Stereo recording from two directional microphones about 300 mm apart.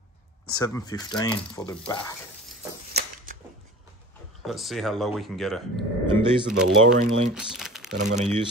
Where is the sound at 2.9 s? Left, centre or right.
Right.